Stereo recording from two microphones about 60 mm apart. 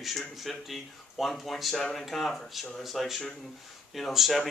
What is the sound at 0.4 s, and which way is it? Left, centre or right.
Speech, centre.